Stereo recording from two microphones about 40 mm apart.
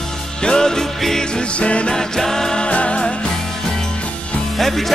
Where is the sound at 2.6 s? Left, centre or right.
Left.